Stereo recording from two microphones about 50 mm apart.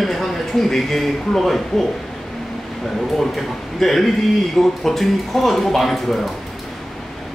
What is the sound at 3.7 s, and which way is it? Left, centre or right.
Speech, centre.